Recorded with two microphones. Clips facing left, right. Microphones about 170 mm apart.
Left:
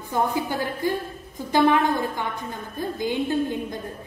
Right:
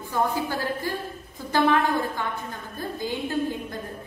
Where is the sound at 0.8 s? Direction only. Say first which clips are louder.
Left 5 dB; 20° left (ahead or behind).